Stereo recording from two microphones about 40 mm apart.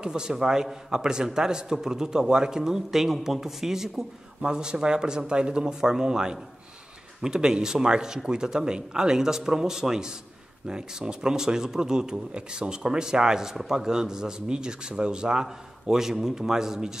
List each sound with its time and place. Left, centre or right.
0.0 s a man's voice: centre